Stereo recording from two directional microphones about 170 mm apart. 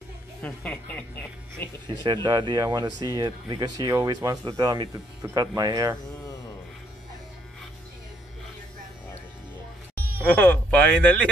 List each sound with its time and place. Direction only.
0.4 s speech: 10° left (ahead or behind)
2.2 s speech: 25° right (ahead or behind)
10.2 s speech: 10° left (ahead or behind)